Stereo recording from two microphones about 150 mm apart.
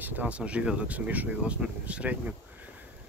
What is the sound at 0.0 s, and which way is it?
Speech, 10° right (ahead or behind).